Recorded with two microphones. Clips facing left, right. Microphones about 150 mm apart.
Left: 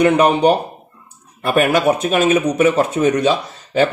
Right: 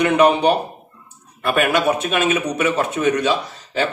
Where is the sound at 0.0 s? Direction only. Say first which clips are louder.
Left 2 dB; 40° left (ahead or behind).